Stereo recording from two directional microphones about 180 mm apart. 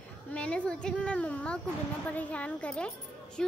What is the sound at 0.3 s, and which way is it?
A woman's voice, 5° left (ahead or behind).